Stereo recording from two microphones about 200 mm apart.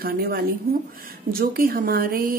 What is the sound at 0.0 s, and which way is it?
Speech, 50° right (ahead or behind).